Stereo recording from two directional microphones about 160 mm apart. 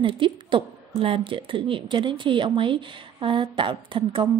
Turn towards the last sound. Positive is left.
turn(degrees=-30)  # may be behind; listen again after turning